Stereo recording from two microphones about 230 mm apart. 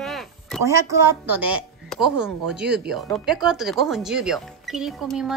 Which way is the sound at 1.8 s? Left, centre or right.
Centre.